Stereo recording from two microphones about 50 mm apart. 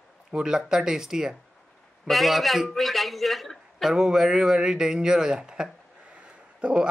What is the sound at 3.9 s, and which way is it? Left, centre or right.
Speech, centre.